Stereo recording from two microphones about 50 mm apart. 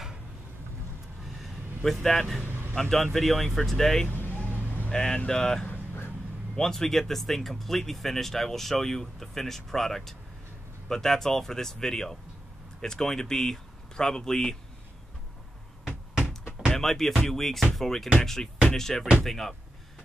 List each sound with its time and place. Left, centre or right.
1.4 s a sound: centre
2.4 s vehicle: right
2.7 s speech: centre
4.1 s vehicle: left
4.9 s speech: centre
16.7 s speech: centre